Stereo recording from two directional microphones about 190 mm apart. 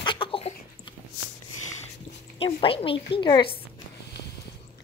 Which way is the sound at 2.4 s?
30° left (ahead or behind).